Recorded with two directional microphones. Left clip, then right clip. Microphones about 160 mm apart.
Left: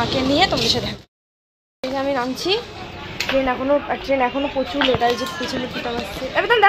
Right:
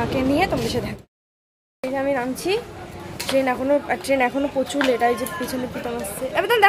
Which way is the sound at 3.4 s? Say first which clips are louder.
Even; 25° right (ahead or behind).